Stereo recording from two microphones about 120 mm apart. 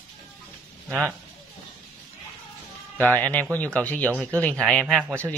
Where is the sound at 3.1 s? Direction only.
10° left (ahead or behind).